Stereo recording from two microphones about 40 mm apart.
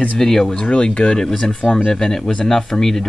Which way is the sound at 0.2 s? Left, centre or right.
Centre.